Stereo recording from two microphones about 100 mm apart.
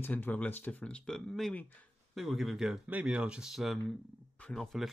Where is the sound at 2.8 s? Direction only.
15° right (ahead or behind).